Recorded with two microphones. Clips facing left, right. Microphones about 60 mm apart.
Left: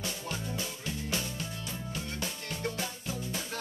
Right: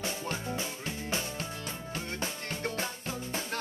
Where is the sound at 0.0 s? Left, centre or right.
Right.